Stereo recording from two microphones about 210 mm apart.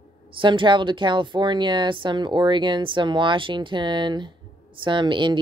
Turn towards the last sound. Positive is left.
turn(degrees=-20)  # may be behind; listen again after turning